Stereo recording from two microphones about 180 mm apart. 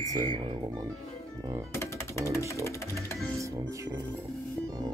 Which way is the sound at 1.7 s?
15° left (ahead or behind).